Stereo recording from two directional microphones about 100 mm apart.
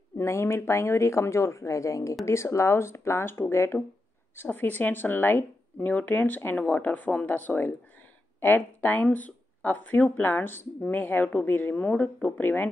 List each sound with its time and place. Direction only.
0.2 s a woman's voice: 25° left (ahead or behind)